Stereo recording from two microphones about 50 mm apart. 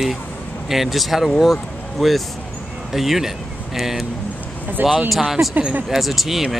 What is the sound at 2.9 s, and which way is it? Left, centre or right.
Speech, centre.